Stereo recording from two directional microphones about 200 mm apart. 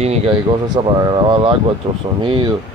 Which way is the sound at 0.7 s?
20° right (ahead or behind).